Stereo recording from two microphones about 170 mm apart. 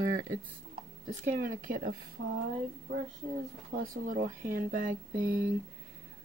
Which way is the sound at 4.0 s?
50° right (ahead or behind).